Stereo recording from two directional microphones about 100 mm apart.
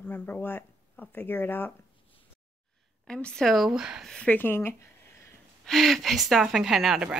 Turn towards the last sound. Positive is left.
turn(degrees=-5)  # may be behind; listen again after turning